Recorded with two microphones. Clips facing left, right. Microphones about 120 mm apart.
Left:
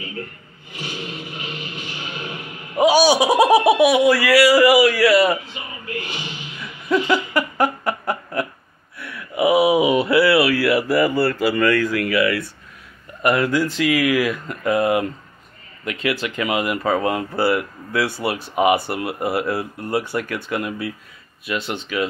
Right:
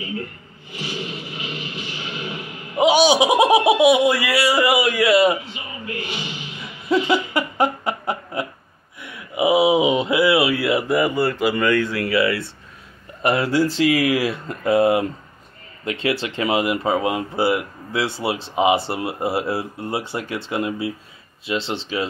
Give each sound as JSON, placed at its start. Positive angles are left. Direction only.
{"t": 2.8, "sound": "speech", "side_deg": -20}
{"t": 6.9, "sound": "a sound", "side_deg": -25}
{"t": 9.0, "sound": "speech", "side_deg": -20}